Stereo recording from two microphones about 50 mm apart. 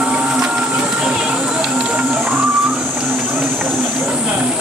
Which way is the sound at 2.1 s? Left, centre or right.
Right.